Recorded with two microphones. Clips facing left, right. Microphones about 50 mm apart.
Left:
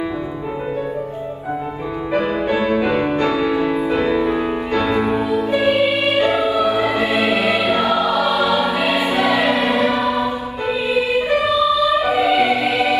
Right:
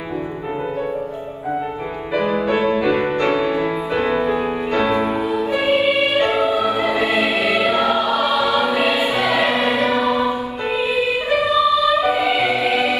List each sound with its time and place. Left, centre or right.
2.1 s music: left
3.2 s music: right
3.5 s music: left
3.9 s music: right
5.4 s music: left
5.9 s music: right
6.6 s music: left
7.8 s music: right
8.9 s choir: left
9.3 s choir: right
9.8 s mantra: left
10.0 s music: right
12.0 s music: left
12.4 s music: right